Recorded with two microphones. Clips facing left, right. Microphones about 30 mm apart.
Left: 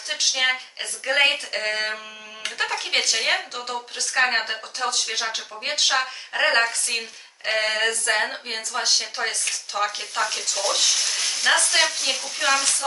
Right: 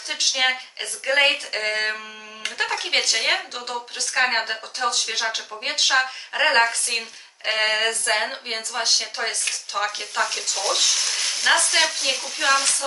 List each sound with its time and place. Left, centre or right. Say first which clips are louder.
0.1 s speech: right 1 dB; centre